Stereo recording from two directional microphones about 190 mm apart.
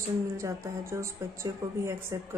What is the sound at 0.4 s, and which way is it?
A woman's voice, 15° right (ahead or behind).